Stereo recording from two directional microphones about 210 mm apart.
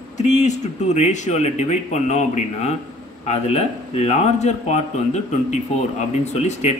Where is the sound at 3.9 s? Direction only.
30° left (ahead or behind).